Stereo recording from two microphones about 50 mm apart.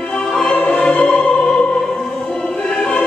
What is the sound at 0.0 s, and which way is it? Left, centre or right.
Music, centre.